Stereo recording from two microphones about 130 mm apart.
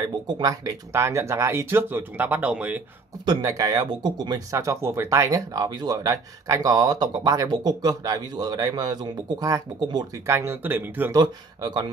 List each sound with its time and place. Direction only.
0.0 s speech: 30° right (ahead or behind); by 2.8 s 10° right (ahead or behind)
3.3 s speech: 30° right (ahead or behind)
11.1 s speech: 35° right (ahead or behind)